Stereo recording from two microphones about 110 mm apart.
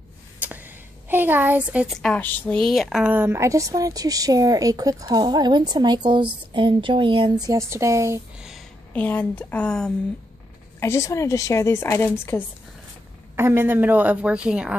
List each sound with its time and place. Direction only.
0.4 s a sound: 15° right (ahead or behind)
1.9 s a woman's voice: 5° left (ahead or behind)
2.2 s speech: 15° left (ahead or behind)
2.7 s a woman's voice: centre (ahead or behind); by 7.4 s 50° right (ahead or behind)
7.4 s speech: 30° right (ahead or behind)
8.4 s a sound: 5° right (ahead or behind)
8.9 s speech: 15° left (ahead or behind)
10.8 s a woman's voice: 25° left (ahead or behind)
13.4 s a woman's voice: 20° right (ahead or behind)